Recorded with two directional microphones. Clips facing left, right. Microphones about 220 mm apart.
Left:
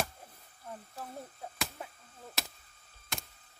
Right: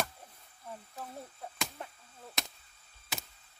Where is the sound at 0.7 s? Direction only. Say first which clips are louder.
Even; centre (ahead or behind).